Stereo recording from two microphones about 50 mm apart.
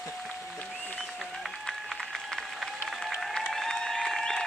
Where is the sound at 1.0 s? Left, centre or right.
Centre.